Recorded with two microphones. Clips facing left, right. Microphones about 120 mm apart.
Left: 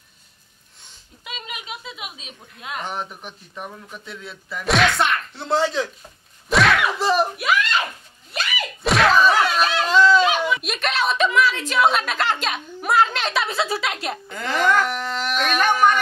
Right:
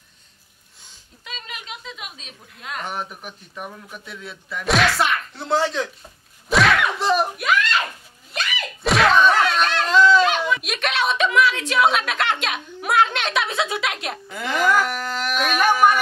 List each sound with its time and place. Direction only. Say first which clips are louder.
1.2 s speech: left 2 dB; 5° left (ahead or behind)
8.3 s door: left 1 dB; 5° left (ahead or behind)